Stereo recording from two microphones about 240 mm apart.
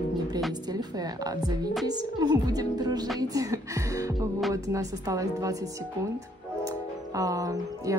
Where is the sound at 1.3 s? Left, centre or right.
Centre.